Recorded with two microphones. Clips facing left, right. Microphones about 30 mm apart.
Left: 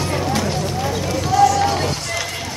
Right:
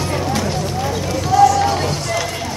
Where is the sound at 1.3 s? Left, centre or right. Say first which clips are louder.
Right 3 dB; left.